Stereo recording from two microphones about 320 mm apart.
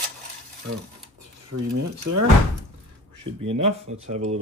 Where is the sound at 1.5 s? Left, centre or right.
Right.